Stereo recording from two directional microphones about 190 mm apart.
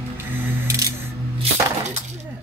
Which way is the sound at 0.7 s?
15° right (ahead or behind).